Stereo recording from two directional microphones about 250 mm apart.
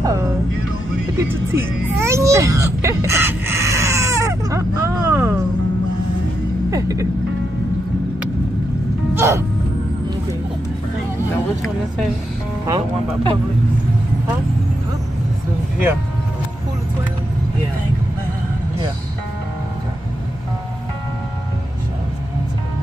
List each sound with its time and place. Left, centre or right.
0.0 s music: centre
6.7 s music: centre
9.1 s music: centre
12.6 s speech: centre